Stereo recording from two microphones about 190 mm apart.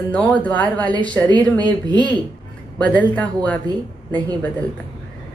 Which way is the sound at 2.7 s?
5° left (ahead or behind).